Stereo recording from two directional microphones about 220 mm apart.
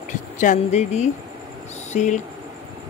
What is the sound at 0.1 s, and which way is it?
Speech, 35° left (ahead or behind).